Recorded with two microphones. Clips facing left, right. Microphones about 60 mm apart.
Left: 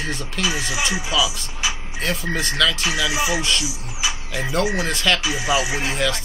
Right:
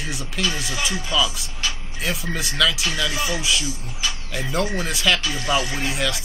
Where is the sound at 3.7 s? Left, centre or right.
Centre.